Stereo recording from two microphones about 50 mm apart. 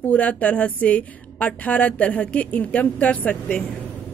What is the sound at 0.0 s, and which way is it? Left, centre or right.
A woman's voice, left.